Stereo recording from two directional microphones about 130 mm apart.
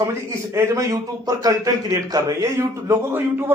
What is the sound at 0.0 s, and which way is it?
Speech, 20° right (ahead or behind).